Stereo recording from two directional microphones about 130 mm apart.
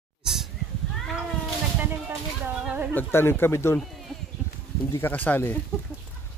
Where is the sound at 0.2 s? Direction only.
5° right (ahead or behind).